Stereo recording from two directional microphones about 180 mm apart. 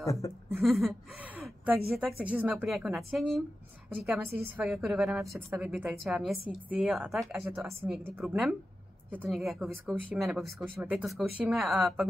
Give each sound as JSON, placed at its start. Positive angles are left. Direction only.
{"t": 0.0, "sound": "speech", "side_deg": 15}
{"t": 0.6, "sound": "a woman's voice", "side_deg": 0}